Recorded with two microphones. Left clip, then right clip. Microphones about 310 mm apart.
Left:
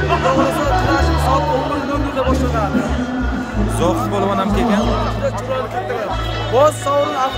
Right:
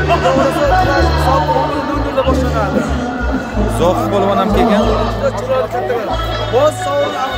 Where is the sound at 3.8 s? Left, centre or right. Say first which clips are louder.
Right 4 dB; centre.